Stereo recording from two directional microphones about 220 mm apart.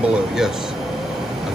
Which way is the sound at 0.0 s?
5° right (ahead or behind).